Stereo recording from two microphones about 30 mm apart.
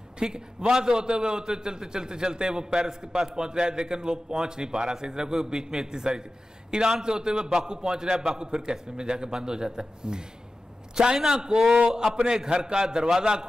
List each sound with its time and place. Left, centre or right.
0.2 s a man's voice: right